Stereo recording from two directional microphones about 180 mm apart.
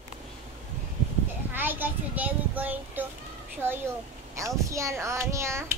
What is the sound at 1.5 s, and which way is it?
A child's voice, 10° right (ahead or behind).